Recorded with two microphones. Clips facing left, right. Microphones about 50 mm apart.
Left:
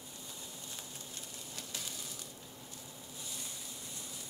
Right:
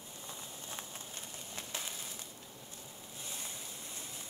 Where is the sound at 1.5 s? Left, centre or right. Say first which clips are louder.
Right 3 dB; right.